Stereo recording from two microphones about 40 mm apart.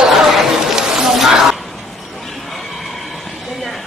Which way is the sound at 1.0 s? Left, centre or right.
Centre.